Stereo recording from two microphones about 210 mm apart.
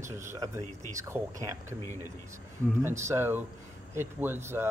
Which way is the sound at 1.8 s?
15° left (ahead or behind).